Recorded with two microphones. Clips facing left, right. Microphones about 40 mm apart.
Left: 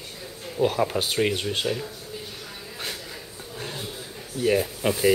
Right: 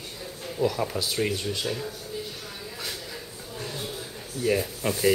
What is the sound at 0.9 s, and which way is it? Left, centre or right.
Speech, left.